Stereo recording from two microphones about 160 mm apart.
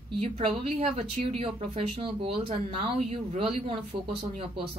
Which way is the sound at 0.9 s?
40° right (ahead or behind).